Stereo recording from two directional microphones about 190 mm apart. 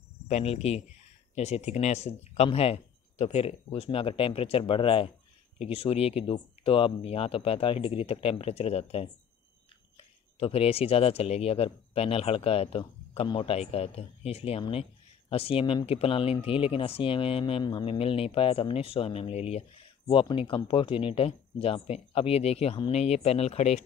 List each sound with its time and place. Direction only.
0.3 s speech: 35° left (ahead or behind)